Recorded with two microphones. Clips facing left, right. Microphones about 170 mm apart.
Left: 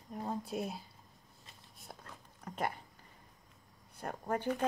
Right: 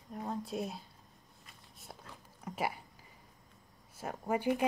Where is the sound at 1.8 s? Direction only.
Centre (ahead or behind).